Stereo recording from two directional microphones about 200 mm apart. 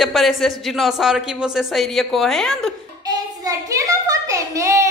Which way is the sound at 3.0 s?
15° right (ahead or behind).